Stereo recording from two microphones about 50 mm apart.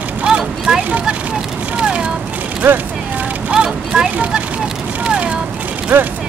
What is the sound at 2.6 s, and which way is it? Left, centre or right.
Speech, right.